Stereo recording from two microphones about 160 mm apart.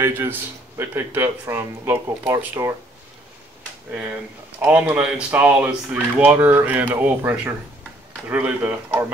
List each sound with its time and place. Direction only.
0.0 s speech: 15° right (ahead or behind)
3.9 s speech: 10° right (ahead or behind)